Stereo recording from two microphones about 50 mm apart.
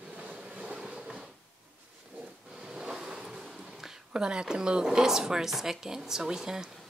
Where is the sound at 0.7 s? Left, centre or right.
Centre.